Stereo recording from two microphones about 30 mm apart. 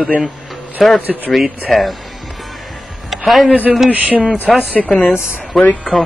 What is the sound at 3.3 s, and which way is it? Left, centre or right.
Speech, centre.